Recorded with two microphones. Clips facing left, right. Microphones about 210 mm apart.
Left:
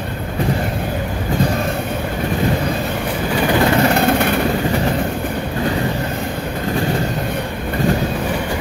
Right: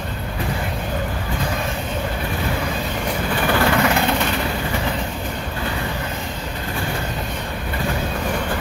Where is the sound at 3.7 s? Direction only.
30° left (ahead or behind).